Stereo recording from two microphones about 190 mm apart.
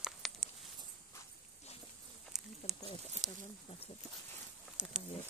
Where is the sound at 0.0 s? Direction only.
Centre (ahead or behind).